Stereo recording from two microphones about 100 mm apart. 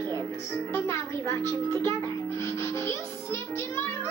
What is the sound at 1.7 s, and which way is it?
Music, 25° left (ahead or behind).